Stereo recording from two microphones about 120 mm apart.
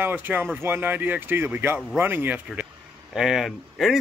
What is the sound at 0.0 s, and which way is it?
Speech, 15° right (ahead or behind).